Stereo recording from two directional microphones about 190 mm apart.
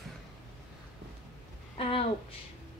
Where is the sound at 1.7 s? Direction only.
30° left (ahead or behind).